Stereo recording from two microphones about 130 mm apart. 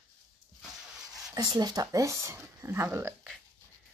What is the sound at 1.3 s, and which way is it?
Speech, 30° right (ahead or behind).